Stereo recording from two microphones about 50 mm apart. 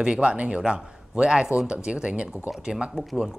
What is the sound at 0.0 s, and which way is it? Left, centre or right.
Speech, centre.